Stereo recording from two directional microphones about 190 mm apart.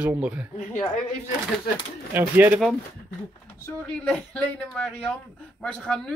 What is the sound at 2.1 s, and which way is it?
Speech, 10° right (ahead or behind).